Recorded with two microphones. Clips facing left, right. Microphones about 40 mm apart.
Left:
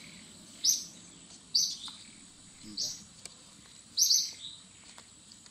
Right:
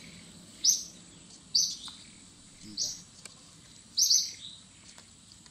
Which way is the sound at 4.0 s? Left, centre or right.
Centre.